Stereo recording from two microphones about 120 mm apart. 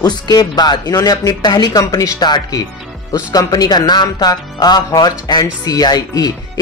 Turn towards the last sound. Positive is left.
turn(degrees=35)  # may be behind; listen again after turning